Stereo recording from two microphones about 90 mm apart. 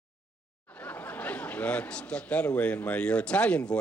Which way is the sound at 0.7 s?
15° left (ahead or behind).